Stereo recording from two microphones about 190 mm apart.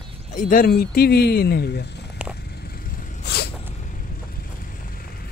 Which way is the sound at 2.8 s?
60° left (ahead or behind).